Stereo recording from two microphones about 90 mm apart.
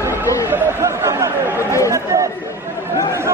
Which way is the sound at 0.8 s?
35° right (ahead or behind).